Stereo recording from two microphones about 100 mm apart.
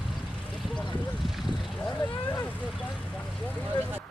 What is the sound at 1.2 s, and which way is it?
Vehicle, centre (ahead or behind).